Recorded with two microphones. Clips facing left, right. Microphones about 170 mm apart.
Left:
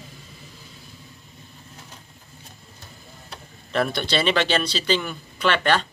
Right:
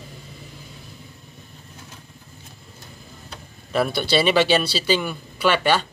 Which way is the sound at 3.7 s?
5° right (ahead or behind).